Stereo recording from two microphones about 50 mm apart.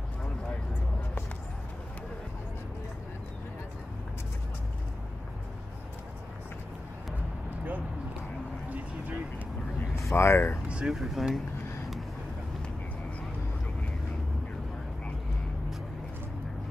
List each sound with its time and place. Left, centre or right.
8.6 s vehicle: right
10.1 s speech: left
10.7 s speech: right
11.0 s speech: centre